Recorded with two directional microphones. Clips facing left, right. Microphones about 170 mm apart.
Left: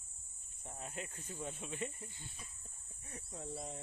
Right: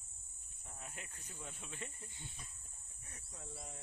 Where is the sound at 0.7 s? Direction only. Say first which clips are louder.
Left 7 dB; 30° left (ahead or behind).